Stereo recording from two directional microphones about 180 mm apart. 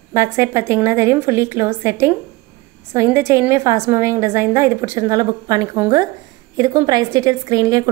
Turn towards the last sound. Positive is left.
turn(degrees=-20)  # may be behind; listen again after turning